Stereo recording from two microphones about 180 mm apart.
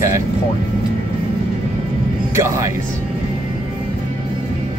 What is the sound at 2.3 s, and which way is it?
Speech, 15° right (ahead or behind).